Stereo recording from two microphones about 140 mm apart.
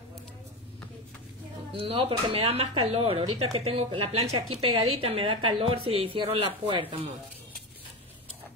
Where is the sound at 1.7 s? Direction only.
40° right (ahead or behind).